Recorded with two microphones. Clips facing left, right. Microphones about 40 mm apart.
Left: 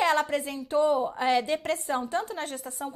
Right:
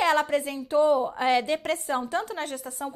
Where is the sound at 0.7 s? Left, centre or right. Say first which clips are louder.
Right 2 dB; centre.